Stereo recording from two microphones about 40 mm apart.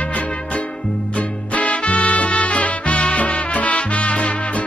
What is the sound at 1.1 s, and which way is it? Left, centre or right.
Music, left.